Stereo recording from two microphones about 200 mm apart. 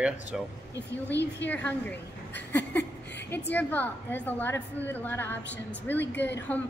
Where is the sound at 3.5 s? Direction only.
10° left (ahead or behind).